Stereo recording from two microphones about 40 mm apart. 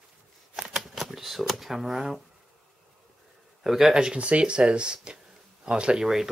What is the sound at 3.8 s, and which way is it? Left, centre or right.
Speech, centre.